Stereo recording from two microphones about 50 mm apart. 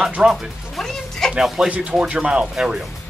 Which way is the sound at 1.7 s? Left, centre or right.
Right.